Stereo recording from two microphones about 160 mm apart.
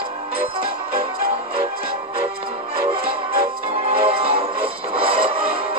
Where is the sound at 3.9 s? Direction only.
35° right (ahead or behind).